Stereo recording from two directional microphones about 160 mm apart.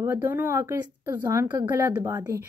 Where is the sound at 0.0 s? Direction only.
15° right (ahead or behind).